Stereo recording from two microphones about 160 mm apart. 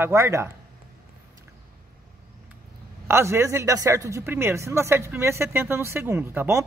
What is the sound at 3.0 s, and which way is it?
Speech, 15° right (ahead or behind).